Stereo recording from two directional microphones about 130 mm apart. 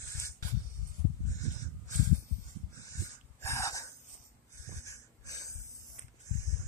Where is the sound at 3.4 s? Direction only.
25° left (ahead or behind).